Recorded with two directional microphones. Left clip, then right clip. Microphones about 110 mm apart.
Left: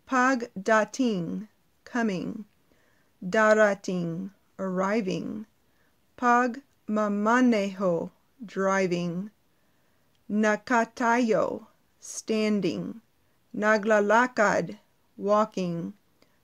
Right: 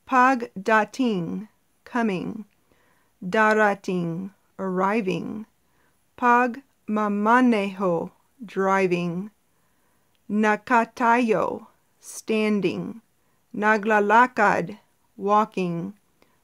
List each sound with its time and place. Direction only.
0.0 s speech: 30° right (ahead or behind)
10.3 s speech: 30° right (ahead or behind)